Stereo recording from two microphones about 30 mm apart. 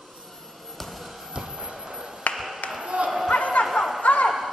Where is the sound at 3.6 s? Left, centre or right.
Left.